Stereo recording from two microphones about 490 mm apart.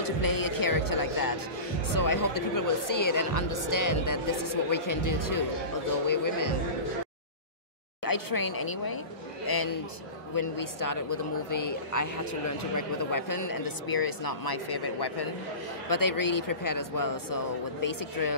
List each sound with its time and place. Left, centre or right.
0.0 s music: left
2.0 s a woman's voice: left
8.0 s a woman's voice: left
15.9 s a woman's voice: left